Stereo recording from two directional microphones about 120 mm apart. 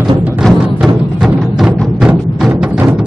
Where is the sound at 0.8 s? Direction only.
Centre (ahead or behind).